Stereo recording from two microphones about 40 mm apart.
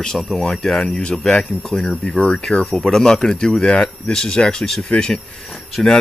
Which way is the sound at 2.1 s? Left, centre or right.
Centre.